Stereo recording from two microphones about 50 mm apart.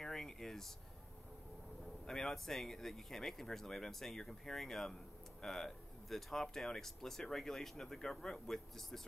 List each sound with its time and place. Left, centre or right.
0.0 s air conditioning: centre
2.0 s speech: centre